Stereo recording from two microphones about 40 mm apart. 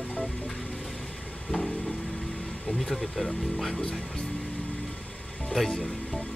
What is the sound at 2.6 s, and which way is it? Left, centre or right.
Speech, centre.